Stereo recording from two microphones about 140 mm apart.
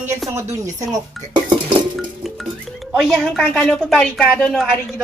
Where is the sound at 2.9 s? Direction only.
5° left (ahead or behind).